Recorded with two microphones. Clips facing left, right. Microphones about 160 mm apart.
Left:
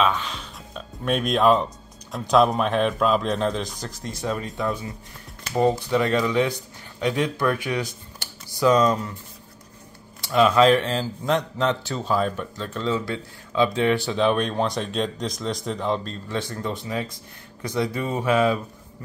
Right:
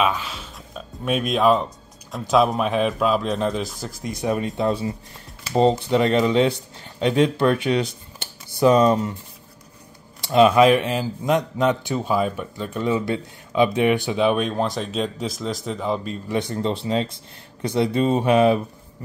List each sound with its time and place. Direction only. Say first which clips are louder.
0.0 s a man's voice: even; 5° right (ahead or behind); by 9.1 s 25° right (ahead or behind)
10.2 s speech: right 3 dB; 20° right (ahead or behind)
16.3 s speech: right 5 dB; 20° right (ahead or behind)